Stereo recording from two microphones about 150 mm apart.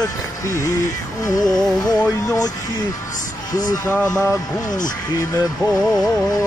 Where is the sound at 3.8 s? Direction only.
10° left (ahead or behind).